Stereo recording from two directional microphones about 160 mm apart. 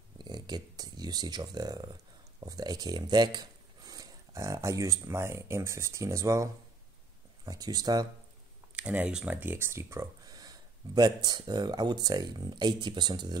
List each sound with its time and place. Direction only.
0.2 s speech: 25° right (ahead or behind)
8.7 s speech: 10° right (ahead or behind); by 13.4 s 25° right (ahead or behind)